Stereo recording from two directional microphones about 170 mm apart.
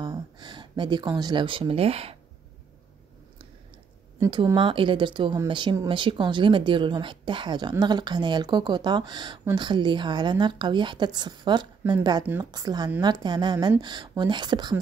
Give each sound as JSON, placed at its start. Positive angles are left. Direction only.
{"t": 0.0, "sound": "speech", "side_deg": -25}
{"t": 4.2, "sound": "speech", "side_deg": -30}